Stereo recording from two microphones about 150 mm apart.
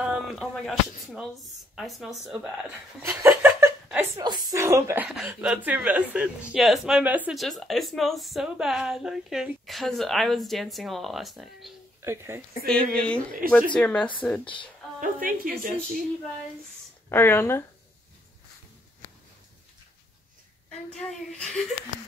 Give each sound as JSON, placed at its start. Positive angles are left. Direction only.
{"t": 0.0, "sound": "a sound", "side_deg": -5}
{"t": 1.8, "sound": "a woman's voice", "side_deg": 0}
{"t": 3.0, "sound": "chuckle", "side_deg": -20}
{"t": 4.5, "sound": "speech", "side_deg": -20}
{"t": 5.0, "sound": "a woman's voice", "side_deg": -5}
{"t": 12.0, "sound": "speech", "side_deg": -15}
{"t": 12.6, "sound": "speech", "side_deg": 5}
{"t": 14.4, "sound": "speech", "side_deg": 35}
{"t": 15.0, "sound": "a woman's voice", "side_deg": -70}
{"t": 17.1, "sound": "speech", "side_deg": 15}
{"t": 20.9, "sound": "a woman's voice", "side_deg": 5}